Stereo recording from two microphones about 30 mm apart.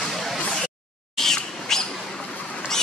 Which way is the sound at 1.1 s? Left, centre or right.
Centre.